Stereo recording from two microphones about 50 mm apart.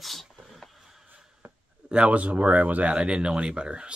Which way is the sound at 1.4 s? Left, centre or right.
Right.